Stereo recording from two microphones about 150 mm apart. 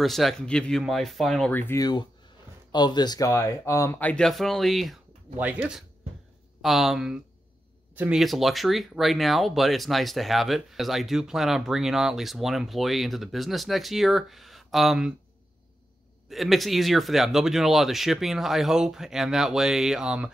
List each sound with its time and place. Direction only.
0.0 s speech: centre (ahead or behind)
1.5 s speech: 15° left (ahead or behind)
1.8 s speech: 30° left (ahead or behind); by 8.2 s 10° right (ahead or behind)
8.2 s speech: centre (ahead or behind)
16.3 s speech: centre (ahead or behind)